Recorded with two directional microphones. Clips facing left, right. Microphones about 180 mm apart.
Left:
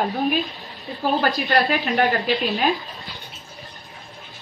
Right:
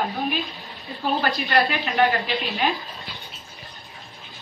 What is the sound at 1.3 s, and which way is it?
Speech, centre (ahead or behind).